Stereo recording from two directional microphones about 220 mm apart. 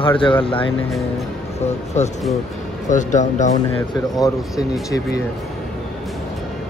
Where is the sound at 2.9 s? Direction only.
35° left (ahead or behind).